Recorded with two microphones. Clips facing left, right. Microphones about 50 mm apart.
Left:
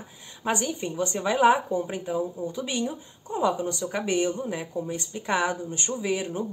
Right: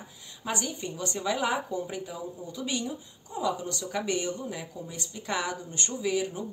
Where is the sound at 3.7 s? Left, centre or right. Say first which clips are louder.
Left 3 dB; left.